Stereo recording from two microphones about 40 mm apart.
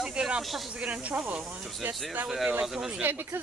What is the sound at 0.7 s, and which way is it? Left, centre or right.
Speech, right.